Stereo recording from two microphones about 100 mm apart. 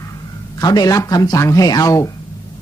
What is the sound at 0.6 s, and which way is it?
Speech, 40° left (ahead or behind).